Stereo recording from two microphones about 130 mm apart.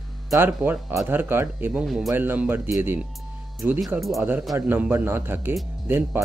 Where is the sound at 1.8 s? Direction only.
Centre (ahead or behind).